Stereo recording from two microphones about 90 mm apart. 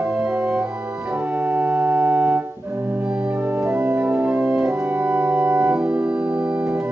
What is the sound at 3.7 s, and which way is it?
Organ, 20° right (ahead or behind).